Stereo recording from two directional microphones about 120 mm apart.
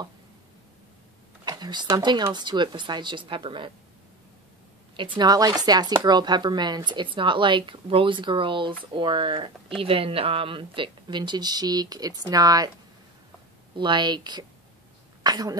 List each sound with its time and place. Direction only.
1.4 s a sound: 35° right (ahead or behind)
2.0 s speech: 40° right (ahead or behind)
4.9 s speech: 40° right (ahead or behind)
13.7 s speech: 40° right (ahead or behind)